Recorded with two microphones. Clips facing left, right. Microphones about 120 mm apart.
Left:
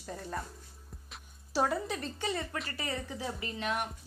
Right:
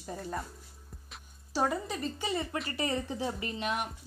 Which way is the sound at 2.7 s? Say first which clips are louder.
Right 5 dB; 20° right (ahead or behind).